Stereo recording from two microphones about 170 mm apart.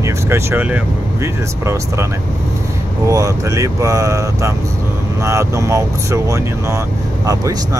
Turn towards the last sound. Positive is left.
turn(degrees=-20)  # may be behind; listen again after turning